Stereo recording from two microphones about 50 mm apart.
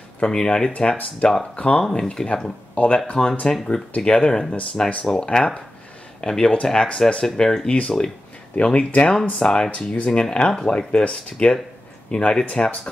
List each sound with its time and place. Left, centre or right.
0.2 s speech: centre
2.7 s speech: left
5.0 s speech: centre
8.7 s speech: left